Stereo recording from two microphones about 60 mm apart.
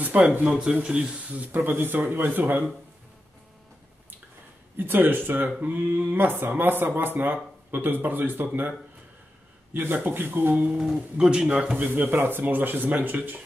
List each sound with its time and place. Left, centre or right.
0.0 s speech: right
0.5 s speech: centre
1.6 s speech: right
4.7 s speech: right
9.8 s speech: right
10.7 s speech: centre
11.8 s speech: right